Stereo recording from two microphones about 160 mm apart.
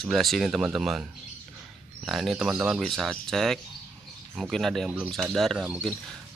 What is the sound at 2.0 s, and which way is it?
Speech, centre (ahead or behind).